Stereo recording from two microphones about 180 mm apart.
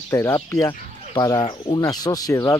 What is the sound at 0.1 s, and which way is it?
Speech, 15° left (ahead or behind).